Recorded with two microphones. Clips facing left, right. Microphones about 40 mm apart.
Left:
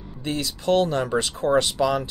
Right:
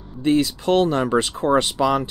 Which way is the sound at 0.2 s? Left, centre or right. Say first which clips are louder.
Right 9 dB; right.